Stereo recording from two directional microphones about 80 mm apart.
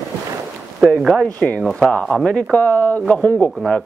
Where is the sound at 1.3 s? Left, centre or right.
Centre.